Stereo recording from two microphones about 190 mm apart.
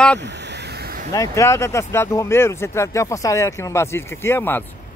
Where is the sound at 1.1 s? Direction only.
15° left (ahead or behind).